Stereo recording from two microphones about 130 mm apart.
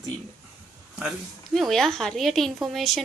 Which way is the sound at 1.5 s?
Centre (ahead or behind).